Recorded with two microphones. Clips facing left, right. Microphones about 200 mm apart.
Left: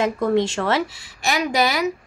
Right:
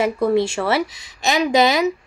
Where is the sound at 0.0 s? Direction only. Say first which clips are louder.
Right 2 dB; 10° right (ahead or behind).